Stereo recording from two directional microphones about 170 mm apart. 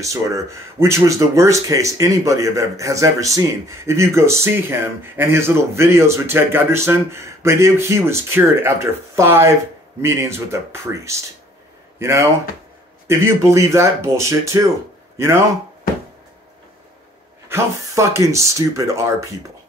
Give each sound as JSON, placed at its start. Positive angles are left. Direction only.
{"t": 0.0, "sound": "speech", "side_deg": -20}
{"t": 17.5, "sound": "speech", "side_deg": -15}